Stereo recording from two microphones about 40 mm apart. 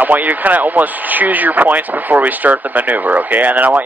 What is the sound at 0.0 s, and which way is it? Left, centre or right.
Speech, right.